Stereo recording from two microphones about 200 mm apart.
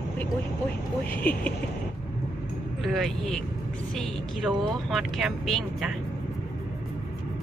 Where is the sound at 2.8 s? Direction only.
Centre (ahead or behind).